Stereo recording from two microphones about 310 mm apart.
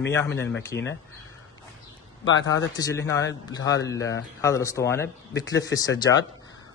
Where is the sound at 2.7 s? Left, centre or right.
Centre.